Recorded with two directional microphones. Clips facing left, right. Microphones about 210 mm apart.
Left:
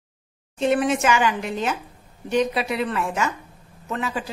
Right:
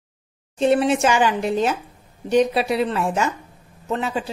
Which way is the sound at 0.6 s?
30° right (ahead or behind).